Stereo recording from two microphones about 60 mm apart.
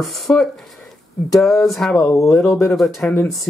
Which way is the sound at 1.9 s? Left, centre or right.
Left.